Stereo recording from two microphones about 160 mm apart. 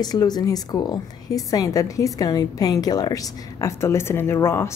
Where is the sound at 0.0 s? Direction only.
25° left (ahead or behind).